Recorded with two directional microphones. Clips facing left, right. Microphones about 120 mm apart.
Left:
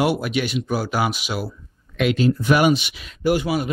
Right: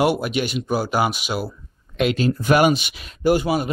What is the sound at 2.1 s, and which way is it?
Speech, 40° right (ahead or behind).